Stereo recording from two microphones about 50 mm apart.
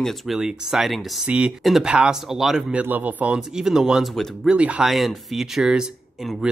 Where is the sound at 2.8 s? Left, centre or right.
Right.